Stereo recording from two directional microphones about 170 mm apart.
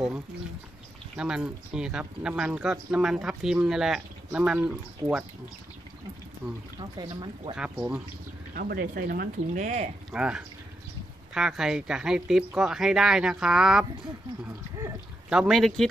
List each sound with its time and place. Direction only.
1.1 s speech: 5° right (ahead or behind)
7.0 s speech: 30° right (ahead or behind)
7.5 s speech: 10° right (ahead or behind)
8.5 s speech: 60° right (ahead or behind)
10.1 s speech: 5° right (ahead or behind)
15.2 s speech: centre (ahead or behind)